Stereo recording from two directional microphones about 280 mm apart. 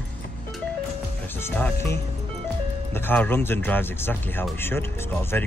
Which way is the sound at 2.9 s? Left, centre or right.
Centre.